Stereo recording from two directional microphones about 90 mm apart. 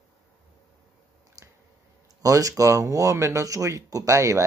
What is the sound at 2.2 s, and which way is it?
Speech, 40° right (ahead or behind).